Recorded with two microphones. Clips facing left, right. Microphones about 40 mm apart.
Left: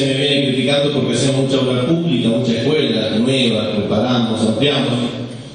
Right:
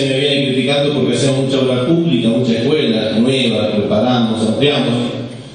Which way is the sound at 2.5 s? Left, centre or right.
Centre.